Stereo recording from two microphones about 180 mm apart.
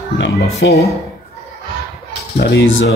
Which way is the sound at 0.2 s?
70° left (ahead or behind).